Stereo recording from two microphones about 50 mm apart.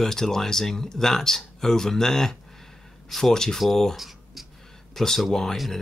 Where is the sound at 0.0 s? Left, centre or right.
Centre.